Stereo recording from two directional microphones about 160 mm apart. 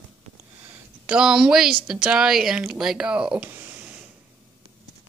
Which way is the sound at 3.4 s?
15° right (ahead or behind).